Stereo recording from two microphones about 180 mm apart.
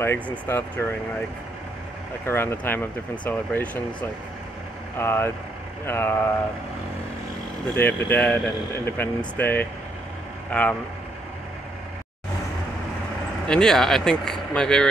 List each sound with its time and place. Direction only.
0.0 s speech: 15° left (ahead or behind)
2.2 s speech: 10° left (ahead or behind)
4.9 s speech: 15° left (ahead or behind)
7.7 s speech: 10° left (ahead or behind)
13.5 s speech: 5° left (ahead or behind)